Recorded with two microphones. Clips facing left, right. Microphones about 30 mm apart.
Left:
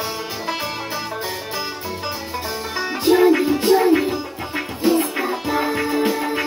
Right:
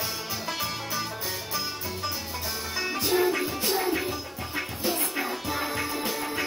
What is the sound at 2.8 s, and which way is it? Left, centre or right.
Music, left.